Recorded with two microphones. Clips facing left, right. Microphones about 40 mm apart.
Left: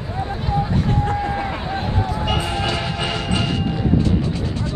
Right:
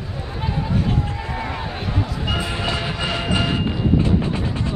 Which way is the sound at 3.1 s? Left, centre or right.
Right.